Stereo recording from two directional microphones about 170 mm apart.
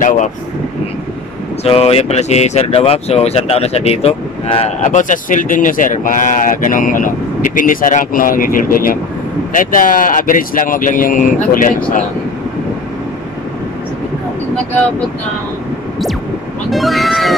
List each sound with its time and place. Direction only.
1.6 s speech: 35° left (ahead or behind)
4.8 s speech: 50° left (ahead or behind)
16.7 s speech: centre (ahead or behind)